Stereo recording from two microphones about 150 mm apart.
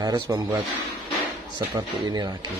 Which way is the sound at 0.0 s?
25° right (ahead or behind).